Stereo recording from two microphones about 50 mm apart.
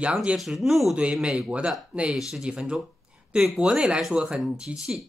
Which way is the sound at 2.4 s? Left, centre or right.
Centre.